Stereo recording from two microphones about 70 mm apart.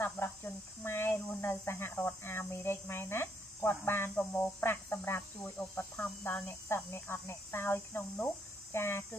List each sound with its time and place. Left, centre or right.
0.2 s cricket: left
0.8 s speech: left